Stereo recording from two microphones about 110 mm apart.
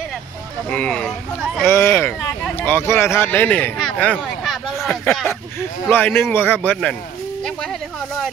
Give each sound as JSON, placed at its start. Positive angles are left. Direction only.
{"t": 0.7, "sound": "speech", "side_deg": 10}
{"t": 1.7, "sound": "speech", "side_deg": 25}
{"t": 4.5, "sound": "a sound", "side_deg": 0}
{"t": 5.2, "sound": "speech", "side_deg": 20}